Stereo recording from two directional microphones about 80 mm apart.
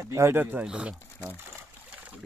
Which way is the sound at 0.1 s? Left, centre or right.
Right.